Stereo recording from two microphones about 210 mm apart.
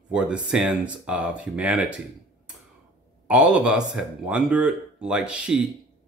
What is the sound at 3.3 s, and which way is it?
Speech, 5° right (ahead or behind).